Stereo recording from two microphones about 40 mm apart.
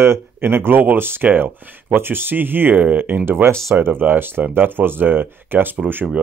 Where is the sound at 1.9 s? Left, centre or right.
Right.